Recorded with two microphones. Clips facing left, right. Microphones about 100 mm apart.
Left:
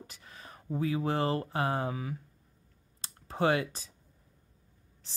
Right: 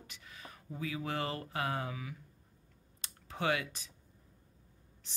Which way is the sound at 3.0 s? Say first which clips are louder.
Left 8 dB; 35° left (ahead or behind).